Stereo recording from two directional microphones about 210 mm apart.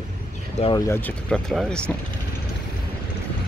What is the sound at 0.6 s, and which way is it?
Speech, 15° left (ahead or behind).